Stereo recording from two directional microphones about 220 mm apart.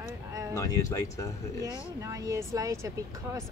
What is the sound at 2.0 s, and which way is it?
Speech, 15° right (ahead or behind).